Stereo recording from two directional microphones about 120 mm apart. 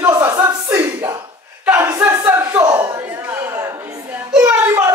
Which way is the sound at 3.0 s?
15° right (ahead or behind).